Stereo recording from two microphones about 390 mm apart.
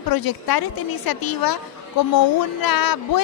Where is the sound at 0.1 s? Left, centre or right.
Left.